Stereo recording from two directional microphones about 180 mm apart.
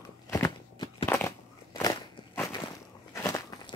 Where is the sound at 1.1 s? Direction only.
15° left (ahead or behind).